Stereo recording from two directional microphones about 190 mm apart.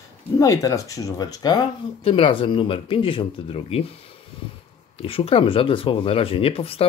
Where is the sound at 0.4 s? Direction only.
15° left (ahead or behind).